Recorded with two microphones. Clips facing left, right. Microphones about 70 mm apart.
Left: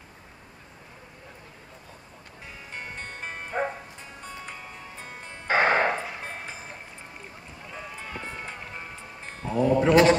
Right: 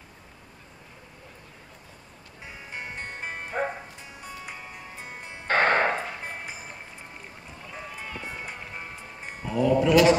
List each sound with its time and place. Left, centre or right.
2.7 s bow-wow: centre
4.2 s music: centre
5.5 s music: centre
8.2 s music: centre
9.5 s sheep: left